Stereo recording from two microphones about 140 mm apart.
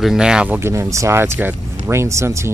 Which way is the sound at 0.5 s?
15° right (ahead or behind).